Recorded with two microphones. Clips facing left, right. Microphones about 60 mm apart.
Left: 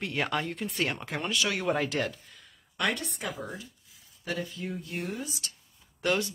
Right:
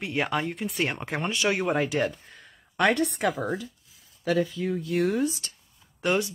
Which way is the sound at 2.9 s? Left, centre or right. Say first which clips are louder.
Right 11 dB; right.